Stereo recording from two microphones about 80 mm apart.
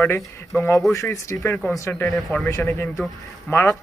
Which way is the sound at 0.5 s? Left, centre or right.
Left.